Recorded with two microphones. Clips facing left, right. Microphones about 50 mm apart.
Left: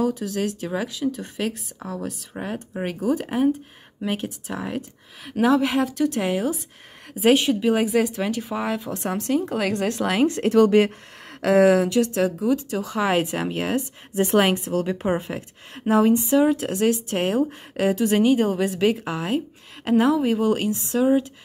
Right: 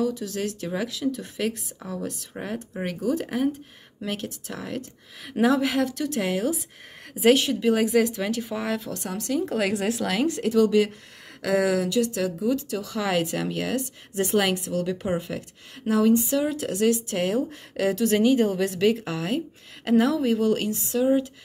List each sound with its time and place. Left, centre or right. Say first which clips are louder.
0.0 s speech: left 3 dB; left
8.9 s speech: left 5 dB; left
9.5 s speech: left 1 dB; centre
10.2 s speech: left 4 dB; left; by 20.8 s centre